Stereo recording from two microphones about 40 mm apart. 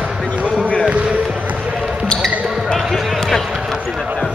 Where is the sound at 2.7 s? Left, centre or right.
Centre.